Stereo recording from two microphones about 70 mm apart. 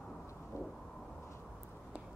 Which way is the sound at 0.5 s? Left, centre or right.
Left.